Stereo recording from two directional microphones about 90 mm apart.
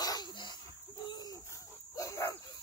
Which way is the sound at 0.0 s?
50° left (ahead or behind).